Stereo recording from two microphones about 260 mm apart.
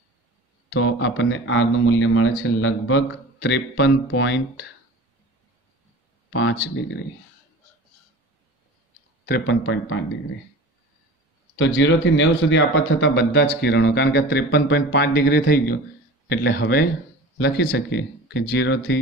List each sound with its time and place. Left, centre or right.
0.7 s speech: left
6.3 s speech: left
9.2 s speech: left
11.5 s speech: left